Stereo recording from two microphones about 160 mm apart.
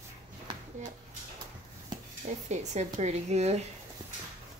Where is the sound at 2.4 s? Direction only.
45° right (ahead or behind).